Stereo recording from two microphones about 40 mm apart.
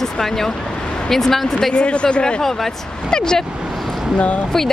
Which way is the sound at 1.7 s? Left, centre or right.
Left.